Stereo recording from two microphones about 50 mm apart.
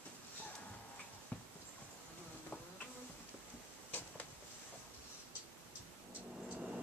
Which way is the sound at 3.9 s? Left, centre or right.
Left.